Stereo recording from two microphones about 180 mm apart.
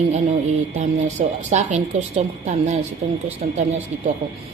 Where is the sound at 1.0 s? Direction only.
40° right (ahead or behind).